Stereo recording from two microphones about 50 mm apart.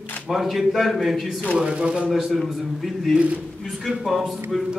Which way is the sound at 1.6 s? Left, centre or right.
Centre.